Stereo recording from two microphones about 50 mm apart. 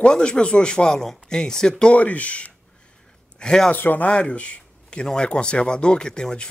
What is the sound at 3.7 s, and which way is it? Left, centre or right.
Speech, left.